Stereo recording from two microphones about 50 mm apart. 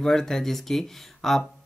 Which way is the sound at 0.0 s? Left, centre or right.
Centre.